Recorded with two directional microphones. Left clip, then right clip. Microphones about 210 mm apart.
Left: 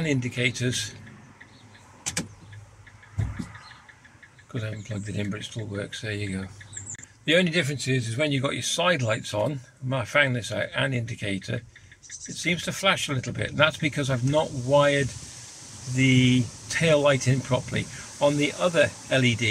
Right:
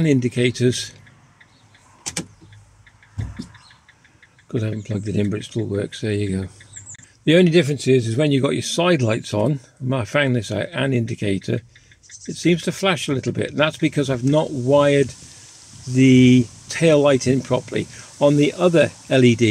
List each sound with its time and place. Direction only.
0.0 s a man's voice: 25° right (ahead or behind)
4.5 s a man's voice: 30° right (ahead or behind)